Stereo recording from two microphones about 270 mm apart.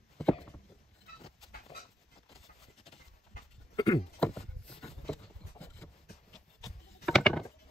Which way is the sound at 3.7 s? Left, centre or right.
Centre.